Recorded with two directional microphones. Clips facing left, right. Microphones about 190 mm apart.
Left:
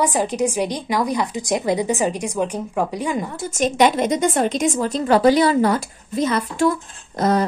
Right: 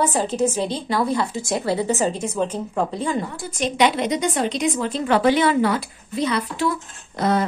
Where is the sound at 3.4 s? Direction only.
45° left (ahead or behind).